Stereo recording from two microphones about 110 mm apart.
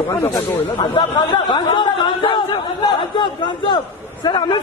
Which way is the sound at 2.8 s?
45° left (ahead or behind).